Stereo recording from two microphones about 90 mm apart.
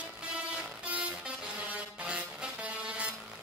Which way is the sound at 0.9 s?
15° right (ahead or behind).